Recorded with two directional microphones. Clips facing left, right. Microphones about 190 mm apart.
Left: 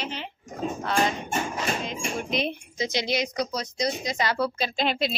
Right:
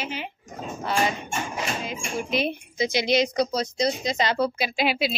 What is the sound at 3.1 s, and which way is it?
A woman's voice, 30° right (ahead or behind).